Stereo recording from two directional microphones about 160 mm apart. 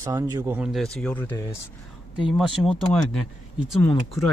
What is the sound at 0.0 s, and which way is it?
Speech, 20° right (ahead or behind).